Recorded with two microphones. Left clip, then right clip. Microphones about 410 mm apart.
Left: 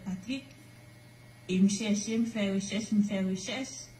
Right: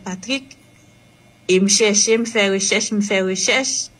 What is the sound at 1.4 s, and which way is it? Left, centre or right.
A woman's voice, left.